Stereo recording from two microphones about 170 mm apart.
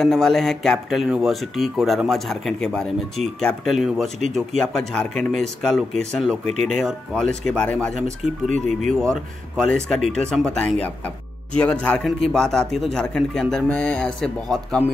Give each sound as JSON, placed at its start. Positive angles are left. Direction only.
{"t": 0.0, "sound": "speech", "side_deg": 0}
{"t": 8.5, "sound": "speech", "side_deg": -45}
{"t": 8.9, "sound": "speech", "side_deg": 5}